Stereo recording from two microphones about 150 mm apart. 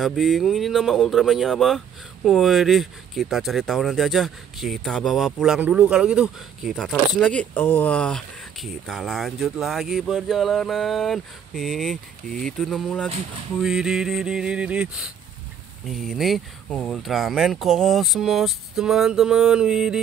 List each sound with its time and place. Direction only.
0.0 s speech: centre (ahead or behind)